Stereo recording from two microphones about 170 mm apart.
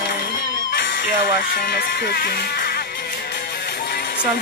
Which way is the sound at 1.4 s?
60° left (ahead or behind).